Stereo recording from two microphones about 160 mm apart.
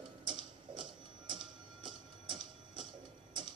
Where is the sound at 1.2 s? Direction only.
30° right (ahead or behind).